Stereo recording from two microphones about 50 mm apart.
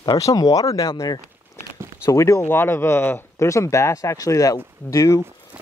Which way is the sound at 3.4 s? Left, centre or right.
Left.